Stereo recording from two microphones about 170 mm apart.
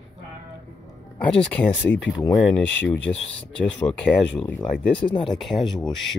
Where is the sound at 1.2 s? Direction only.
10° left (ahead or behind).